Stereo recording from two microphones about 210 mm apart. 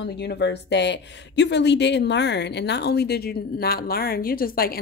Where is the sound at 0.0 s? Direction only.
55° left (ahead or behind).